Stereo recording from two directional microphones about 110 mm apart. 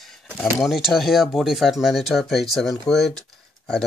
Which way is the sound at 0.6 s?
Centre (ahead or behind).